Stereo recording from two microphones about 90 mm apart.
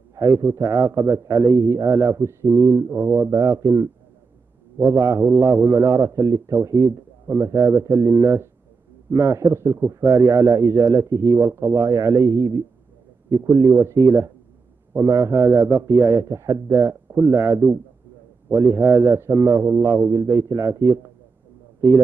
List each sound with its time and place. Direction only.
0.1 s a man's voice: 40° right (ahead or behind)